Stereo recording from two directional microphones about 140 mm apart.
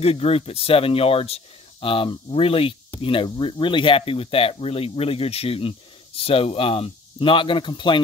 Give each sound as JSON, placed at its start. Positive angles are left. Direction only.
{"t": 0.0, "sound": "speech", "side_deg": 45}